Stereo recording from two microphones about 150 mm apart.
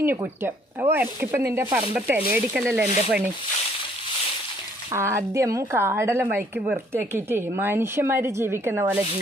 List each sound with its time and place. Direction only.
0.0 s speech: 15° right (ahead or behind)
4.9 s speech: 20° right (ahead or behind)